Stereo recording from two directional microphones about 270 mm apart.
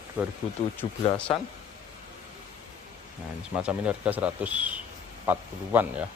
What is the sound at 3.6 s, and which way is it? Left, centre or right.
Speech, centre.